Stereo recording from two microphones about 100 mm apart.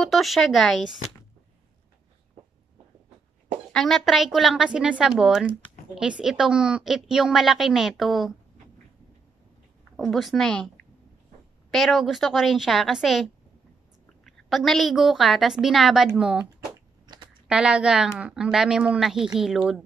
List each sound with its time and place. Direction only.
0.0 s speech: centre (ahead or behind)
3.7 s a woman's voice: centre (ahead or behind)
9.9 s a woman's voice: centre (ahead or behind)
11.7 s a woman's voice: centre (ahead or behind)
17.0 s typing: 45° right (ahead or behind)
17.5 s a woman's voice: 10° right (ahead or behind)